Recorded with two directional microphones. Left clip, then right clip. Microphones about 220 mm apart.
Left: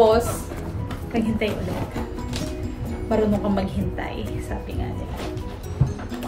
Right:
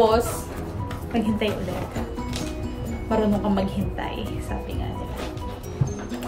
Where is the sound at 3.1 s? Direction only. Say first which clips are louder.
Left 1 dB; 5° right (ahead or behind).